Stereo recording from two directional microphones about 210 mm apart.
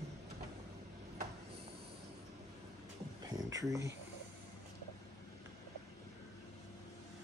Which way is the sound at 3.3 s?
15° right (ahead or behind).